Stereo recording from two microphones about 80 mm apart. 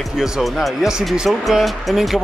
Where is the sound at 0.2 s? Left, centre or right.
Centre.